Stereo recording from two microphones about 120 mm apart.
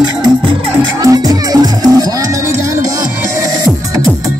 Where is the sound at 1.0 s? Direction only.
30° right (ahead or behind).